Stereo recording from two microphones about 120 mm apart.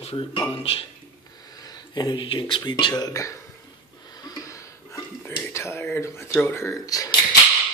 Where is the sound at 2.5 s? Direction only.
40° left (ahead or behind).